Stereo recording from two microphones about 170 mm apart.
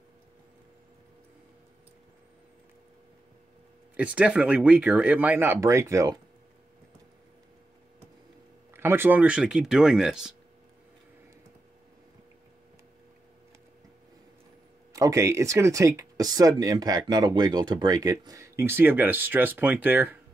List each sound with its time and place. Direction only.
3.9 s speech: 5° right (ahead or behind)
8.7 s speech: 15° right (ahead or behind)
14.9 s speech: 20° right (ahead or behind)